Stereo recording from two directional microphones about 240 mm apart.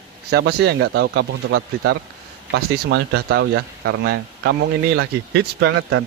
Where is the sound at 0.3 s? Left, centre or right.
Right.